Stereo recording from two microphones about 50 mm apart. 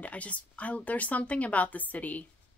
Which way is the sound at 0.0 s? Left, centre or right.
Left.